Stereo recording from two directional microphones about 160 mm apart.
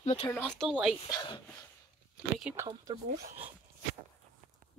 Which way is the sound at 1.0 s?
25° left (ahead or behind).